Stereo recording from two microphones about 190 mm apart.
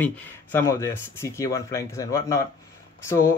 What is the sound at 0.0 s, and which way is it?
Speech, 10° left (ahead or behind).